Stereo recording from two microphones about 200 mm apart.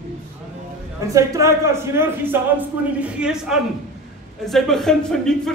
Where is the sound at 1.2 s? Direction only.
15° right (ahead or behind); by 5.5 s 5° left (ahead or behind).